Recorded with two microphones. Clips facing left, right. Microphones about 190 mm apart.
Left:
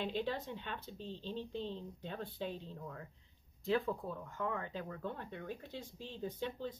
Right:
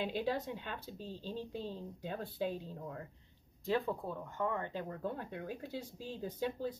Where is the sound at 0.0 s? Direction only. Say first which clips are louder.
Right 2 dB; 10° right (ahead or behind).